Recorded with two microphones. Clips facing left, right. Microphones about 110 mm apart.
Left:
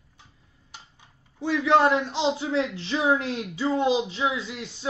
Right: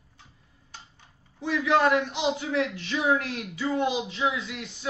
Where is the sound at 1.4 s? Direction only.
30° left (ahead or behind).